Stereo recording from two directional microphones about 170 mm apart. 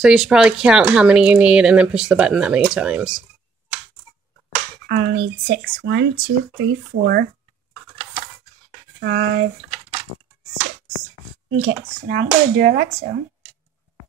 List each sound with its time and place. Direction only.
0.0 s speech: 5° right (ahead or behind)
4.8 s speech: 65° right (ahead or behind); by 6.0 s 85° right
6.6 s speech: 65° right (ahead or behind)
9.0 s speech: 75° right (ahead or behind)
11.6 s speech: 65° right (ahead or behind)